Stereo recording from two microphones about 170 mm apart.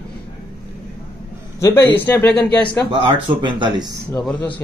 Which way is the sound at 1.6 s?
10° left (ahead or behind).